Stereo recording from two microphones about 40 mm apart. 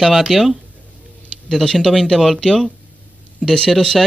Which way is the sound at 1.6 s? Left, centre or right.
Centre.